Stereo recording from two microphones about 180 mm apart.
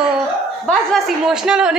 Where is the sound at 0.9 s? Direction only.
Centre (ahead or behind).